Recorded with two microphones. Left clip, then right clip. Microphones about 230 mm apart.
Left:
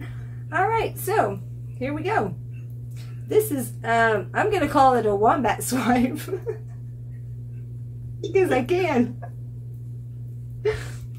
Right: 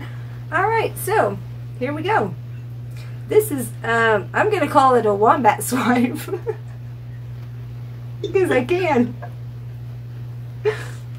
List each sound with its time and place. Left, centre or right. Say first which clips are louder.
0.5 s a sound: right 3 dB; centre
1.8 s a woman's voice: right 5 dB; centre
3.3 s a woman's voice: right 4 dB; centre
8.3 s a woman's voice: right 3 dB; centre